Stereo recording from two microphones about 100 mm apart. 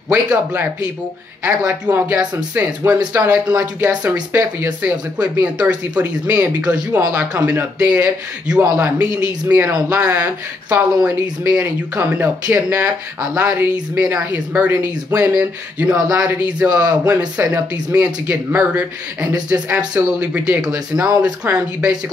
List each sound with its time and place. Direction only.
0.1 s speech: 15° right (ahead or behind)
1.7 s speech: 20° right (ahead or behind)
19.9 s speech: 10° right (ahead or behind)